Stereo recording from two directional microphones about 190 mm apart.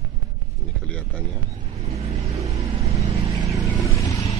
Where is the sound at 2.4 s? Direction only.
30° right (ahead or behind).